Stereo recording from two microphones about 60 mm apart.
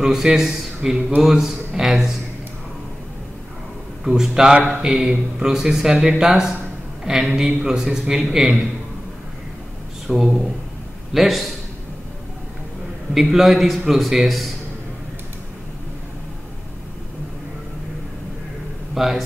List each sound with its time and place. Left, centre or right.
0.0 s a man's voice: centre
4.0 s speech: centre
4.6 s speech: right
4.9 s a man's voice: centre
10.0 s a man's voice: centre
13.1 s a man's voice: centre
18.9 s a man's voice: centre